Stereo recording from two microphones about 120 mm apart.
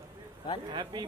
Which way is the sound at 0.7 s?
40° right (ahead or behind).